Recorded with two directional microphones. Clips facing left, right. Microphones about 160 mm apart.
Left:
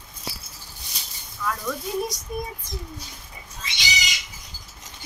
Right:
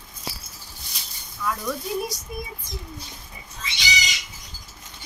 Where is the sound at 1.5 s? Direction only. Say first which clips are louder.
Right 1 dB; 5° right (ahead or behind).